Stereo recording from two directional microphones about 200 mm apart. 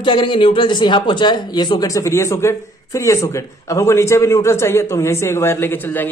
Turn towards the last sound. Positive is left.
turn(degrees=10)  # may be behind; listen again after turning